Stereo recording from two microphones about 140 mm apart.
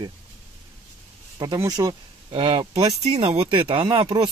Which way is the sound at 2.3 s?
40° right (ahead or behind).